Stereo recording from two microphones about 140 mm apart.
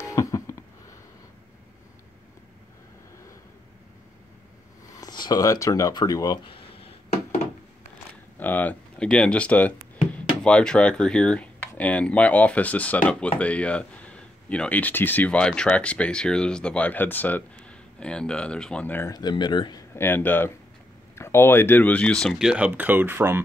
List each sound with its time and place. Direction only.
0.1 s a sound: 20° left (ahead or behind)
5.0 s speech: 30° left (ahead or behind)
6.5 s a sound: 45° left (ahead or behind)
8.4 s speech: 10° left (ahead or behind)
19.1 s speech: 30° left (ahead or behind)
19.9 s speech: 15° left (ahead or behind)
22.5 s speech: 10° right (ahead or behind)